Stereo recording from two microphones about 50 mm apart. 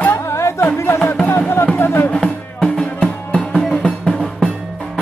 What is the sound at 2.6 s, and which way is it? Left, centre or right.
Music, centre.